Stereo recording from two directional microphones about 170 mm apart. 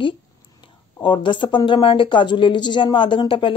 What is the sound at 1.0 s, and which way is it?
Speech, 30° left (ahead or behind).